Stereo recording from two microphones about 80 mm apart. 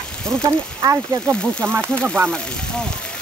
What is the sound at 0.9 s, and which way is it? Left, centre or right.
Speech, right.